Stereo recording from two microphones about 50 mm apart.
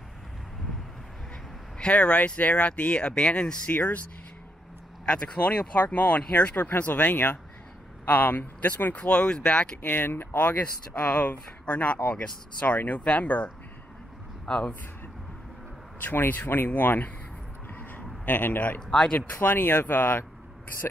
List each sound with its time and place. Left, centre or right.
1.8 s speech: left
3.6 s speech: left
5.0 s speech: left
9.8 s speech: left
11.1 s speech: left
16.0 s speech: left
17.7 s a sound: left
19.4 s speech: left